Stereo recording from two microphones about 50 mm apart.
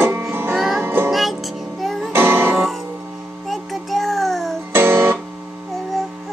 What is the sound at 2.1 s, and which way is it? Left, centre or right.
Music, right.